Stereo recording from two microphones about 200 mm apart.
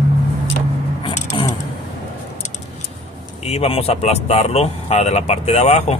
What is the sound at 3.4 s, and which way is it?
Speech, 30° left (ahead or behind).